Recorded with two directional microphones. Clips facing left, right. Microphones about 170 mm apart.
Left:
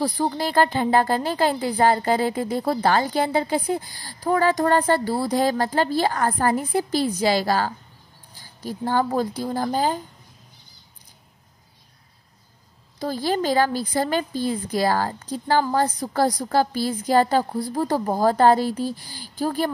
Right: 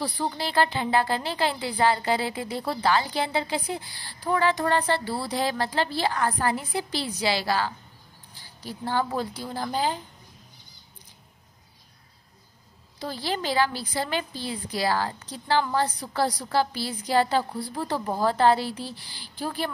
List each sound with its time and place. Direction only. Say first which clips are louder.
0.0 s a woman's voice: left 6 dB; 45° left (ahead or behind)
13.0 s a woman's voice: left 6 dB; 45° left (ahead or behind)